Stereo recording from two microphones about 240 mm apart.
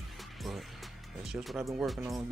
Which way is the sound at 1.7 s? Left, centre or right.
Centre.